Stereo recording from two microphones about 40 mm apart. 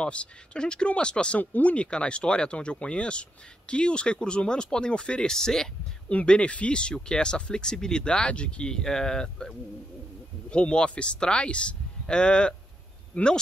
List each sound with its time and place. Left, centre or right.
0.0 s speech: left
5.3 s speech: centre
6.0 s speech: left
8.7 s speech: centre
10.5 s speech: left